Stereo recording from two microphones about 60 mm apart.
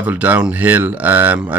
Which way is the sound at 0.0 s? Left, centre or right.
Right.